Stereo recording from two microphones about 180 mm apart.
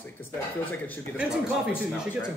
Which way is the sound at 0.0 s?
10° left (ahead or behind).